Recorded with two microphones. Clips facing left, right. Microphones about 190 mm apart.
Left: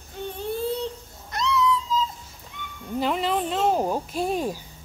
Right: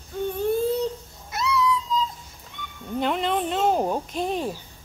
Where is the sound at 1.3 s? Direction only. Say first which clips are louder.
Even; 5° right (ahead or behind).